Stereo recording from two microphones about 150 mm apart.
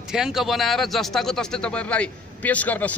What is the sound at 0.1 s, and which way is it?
Speech, 5° right (ahead or behind).